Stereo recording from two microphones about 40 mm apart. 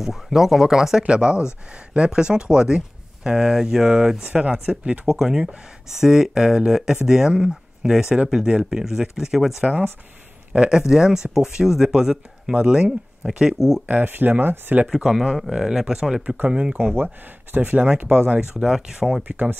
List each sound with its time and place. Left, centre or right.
0.0 s speech: centre
1.0 s speech: right
4.2 s speech: right
5.0 s speech: centre
12.5 s speech: right
13.6 s speech: centre
13.8 s speech: right
15.0 s speech: centre
16.4 s speech: right
16.9 s speech: right
18.6 s speech: centre